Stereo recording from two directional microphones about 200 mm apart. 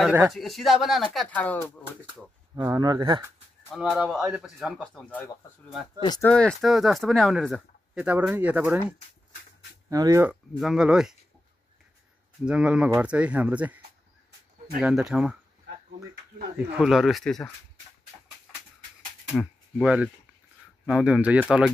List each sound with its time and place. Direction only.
0.0 s speech: 10° right (ahead or behind)
0.3 s speech: centre (ahead or behind)
2.5 s speech: 15° right (ahead or behind)
3.7 s speech: centre (ahead or behind)
5.9 s speech: 20° left (ahead or behind)
6.2 s speech: 5° left (ahead or behind)
9.8 s speech: 15° right (ahead or behind)
10.6 s speech: 5° right (ahead or behind)
12.4 s speech: 5° right (ahead or behind)
14.8 s speech: 5° right (ahead or behind)
16.5 s speech: 5° right (ahead or behind)
19.2 s a sound: 5° right (ahead or behind)
20.8 s speech: 5° right (ahead or behind)